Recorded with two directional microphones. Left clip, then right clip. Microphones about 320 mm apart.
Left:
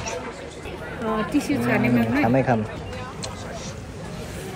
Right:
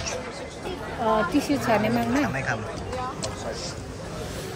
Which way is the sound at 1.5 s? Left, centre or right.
Centre.